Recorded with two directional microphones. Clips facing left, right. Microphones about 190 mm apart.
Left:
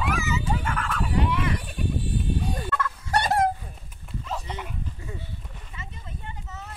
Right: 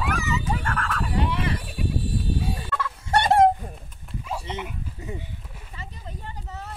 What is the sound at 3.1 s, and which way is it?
Fowl, 25° right (ahead or behind).